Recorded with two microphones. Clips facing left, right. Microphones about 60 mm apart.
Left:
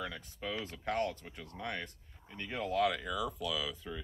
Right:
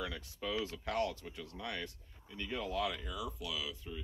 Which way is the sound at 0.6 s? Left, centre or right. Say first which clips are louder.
Left 1 dB; left.